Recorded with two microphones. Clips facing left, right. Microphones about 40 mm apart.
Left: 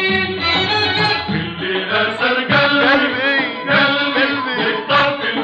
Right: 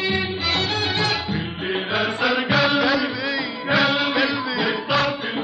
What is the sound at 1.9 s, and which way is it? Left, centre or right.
Mantra, left.